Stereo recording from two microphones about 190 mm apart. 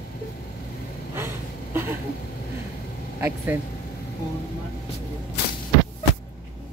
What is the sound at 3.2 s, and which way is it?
Speech, 10° right (ahead or behind).